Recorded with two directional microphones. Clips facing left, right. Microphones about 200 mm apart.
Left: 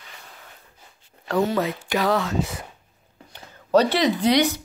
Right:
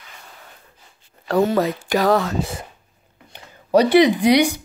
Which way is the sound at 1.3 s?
45° right (ahead or behind).